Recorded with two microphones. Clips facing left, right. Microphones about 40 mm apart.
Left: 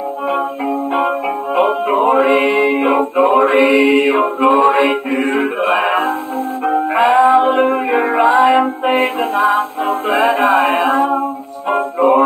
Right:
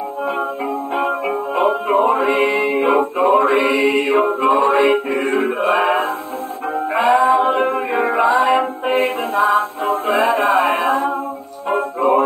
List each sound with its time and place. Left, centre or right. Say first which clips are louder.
0.9 s music: left 1 dB; left
9.2 s music: left 2 dB; centre
11.7 s music: left 3 dB; centre